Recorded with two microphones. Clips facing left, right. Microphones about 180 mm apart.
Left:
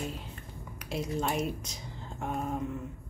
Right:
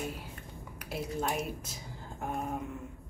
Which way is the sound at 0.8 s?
5° right (ahead or behind).